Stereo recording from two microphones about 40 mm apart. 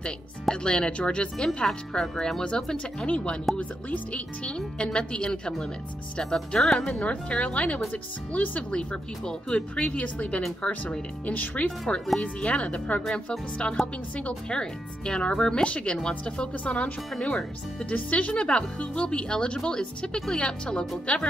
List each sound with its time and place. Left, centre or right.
0.0 s a woman's voice: centre
3.5 s speech: centre
4.1 s a woman's voice: left
6.6 s speech: centre
6.9 s speech: left
9.2 s a woman's voice: centre
9.8 s speech: left
11.3 s speech: left
12.2 s a woman's voice: left
13.0 s a woman's voice: centre
14.6 s a woman's voice: left
16.6 s a woman's voice: left
21.1 s speech: left